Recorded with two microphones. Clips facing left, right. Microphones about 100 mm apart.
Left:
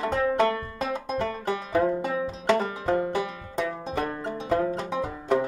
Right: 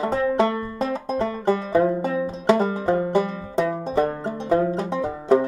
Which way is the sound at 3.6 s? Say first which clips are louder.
Right 7 dB; 30° right (ahead or behind).